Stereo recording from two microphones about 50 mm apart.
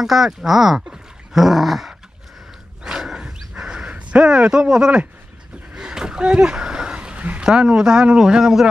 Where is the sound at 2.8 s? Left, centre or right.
Centre.